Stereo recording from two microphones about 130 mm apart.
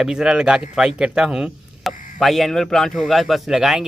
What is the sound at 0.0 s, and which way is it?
A man's voice, 5° right (ahead or behind).